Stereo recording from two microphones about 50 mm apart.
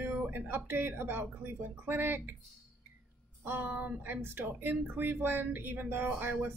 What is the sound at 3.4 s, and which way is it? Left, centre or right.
Speech, right.